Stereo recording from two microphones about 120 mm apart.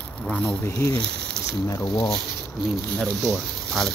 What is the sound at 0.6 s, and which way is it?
Speech, 25° left (ahead or behind).